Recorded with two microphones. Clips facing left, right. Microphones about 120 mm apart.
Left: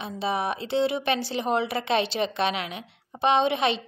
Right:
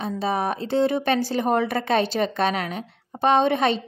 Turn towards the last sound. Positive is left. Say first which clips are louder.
# right 3 dB
turn(degrees=-45)  # may be behind; listen again after turning